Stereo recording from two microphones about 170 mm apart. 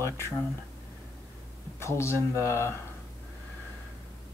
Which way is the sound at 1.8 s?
15° left (ahead or behind).